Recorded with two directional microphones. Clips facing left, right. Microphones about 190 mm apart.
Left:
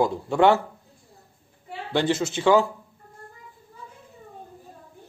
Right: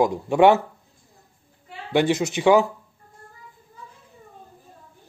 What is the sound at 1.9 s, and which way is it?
Speech, 15° right (ahead or behind).